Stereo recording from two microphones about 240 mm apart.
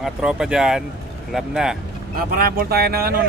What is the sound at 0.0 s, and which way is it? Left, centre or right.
Frog, centre.